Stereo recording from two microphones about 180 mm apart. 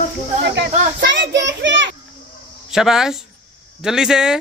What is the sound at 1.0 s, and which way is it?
Child singing, 85° right.